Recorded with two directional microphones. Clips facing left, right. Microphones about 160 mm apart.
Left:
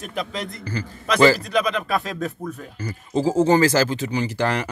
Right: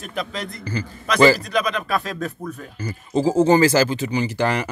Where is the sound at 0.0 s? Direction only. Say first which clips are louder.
Even; 20° left (ahead or behind).